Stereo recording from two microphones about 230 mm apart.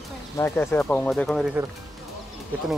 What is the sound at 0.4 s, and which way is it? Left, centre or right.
Speech, centre.